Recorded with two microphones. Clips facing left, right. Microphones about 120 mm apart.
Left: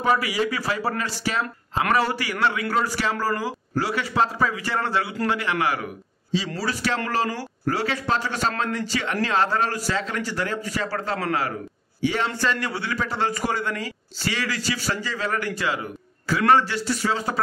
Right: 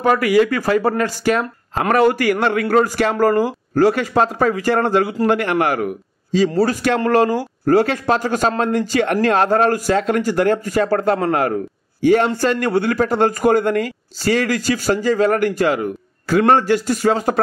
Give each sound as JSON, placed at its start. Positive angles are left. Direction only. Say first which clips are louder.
{"t": 0.0, "sound": "a man's voice", "louder": "right 8 dB", "side_deg": -55}